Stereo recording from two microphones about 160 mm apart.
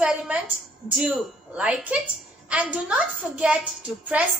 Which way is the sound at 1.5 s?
5° right (ahead or behind).